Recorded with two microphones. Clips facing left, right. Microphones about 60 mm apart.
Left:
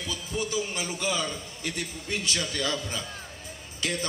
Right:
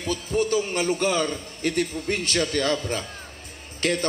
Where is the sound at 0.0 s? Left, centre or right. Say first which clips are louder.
Right 8 dB; right.